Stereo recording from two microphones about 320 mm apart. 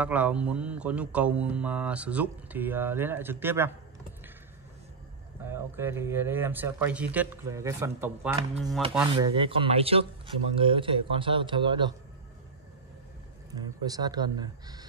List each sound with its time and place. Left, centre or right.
0.0 s speech: centre
5.4 s speech: centre
9.1 s speech: centre
13.5 s speech: centre